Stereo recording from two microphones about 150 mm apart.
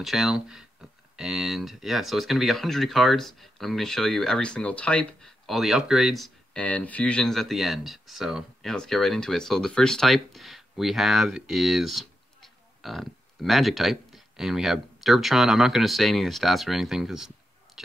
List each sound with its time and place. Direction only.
0.0 s speech: centre (ahead or behind)